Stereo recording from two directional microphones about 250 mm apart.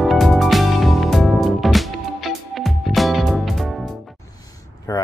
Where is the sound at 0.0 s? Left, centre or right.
Centre.